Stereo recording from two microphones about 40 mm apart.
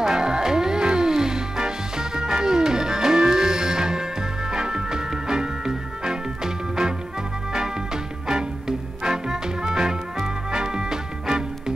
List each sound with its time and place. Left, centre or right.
0.0 s music: centre